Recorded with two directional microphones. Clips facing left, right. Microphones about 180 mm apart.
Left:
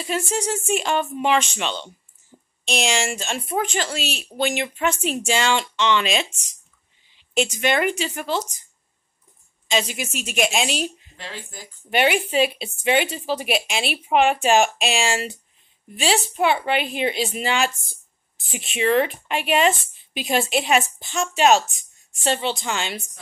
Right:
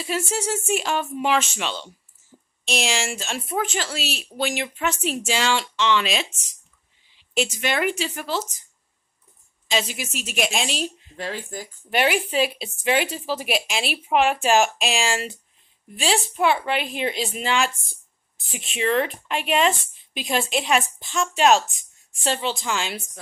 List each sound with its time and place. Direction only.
0.0 s speech: 5° right (ahead or behind)
9.7 s speech: centre (ahead or behind)
11.1 s speech: 45° right (ahead or behind)
11.9 s speech: centre (ahead or behind)